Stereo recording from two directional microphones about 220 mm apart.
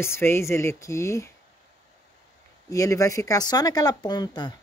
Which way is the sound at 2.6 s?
15° left (ahead or behind).